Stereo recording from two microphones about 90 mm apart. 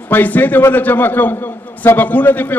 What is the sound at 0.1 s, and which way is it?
A man's voice, 20° left (ahead or behind).